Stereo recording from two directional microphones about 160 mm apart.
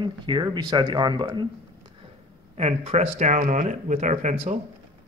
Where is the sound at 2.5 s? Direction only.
40° right (ahead or behind).